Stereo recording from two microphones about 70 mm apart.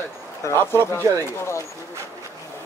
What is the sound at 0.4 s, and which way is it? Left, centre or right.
Speech, left.